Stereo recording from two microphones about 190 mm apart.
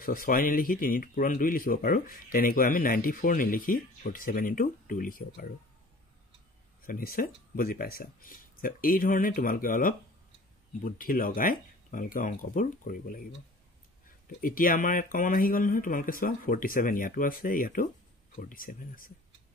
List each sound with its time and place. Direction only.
0.0 s speech: 45° left (ahead or behind)
6.8 s speech: 50° left (ahead or behind)
14.4 s speech: 45° left (ahead or behind)